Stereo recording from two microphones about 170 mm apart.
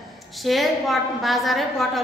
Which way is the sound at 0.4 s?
Centre (ahead or behind).